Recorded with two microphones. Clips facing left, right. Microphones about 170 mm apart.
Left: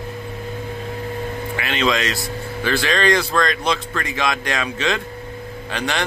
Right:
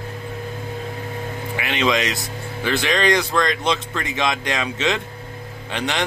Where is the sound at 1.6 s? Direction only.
20° right (ahead or behind).